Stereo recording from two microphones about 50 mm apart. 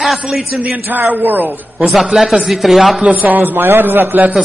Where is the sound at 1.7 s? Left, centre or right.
Centre.